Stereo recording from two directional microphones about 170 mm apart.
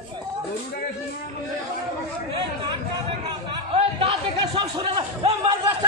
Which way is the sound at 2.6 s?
30° right (ahead or behind).